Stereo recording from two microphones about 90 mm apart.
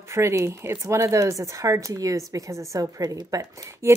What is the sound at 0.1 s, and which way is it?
A woman's voice, 30° right (ahead or behind).